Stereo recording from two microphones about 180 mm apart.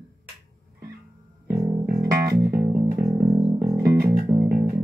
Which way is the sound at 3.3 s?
25° right (ahead or behind).